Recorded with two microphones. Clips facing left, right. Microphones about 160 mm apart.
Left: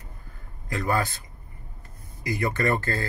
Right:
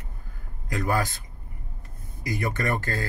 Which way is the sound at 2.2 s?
15° right (ahead or behind).